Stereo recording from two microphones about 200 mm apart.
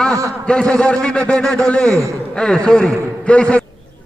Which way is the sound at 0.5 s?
5° left (ahead or behind).